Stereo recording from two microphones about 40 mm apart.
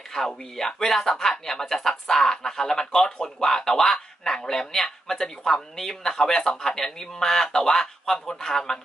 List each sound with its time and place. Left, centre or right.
0.1 s speech: centre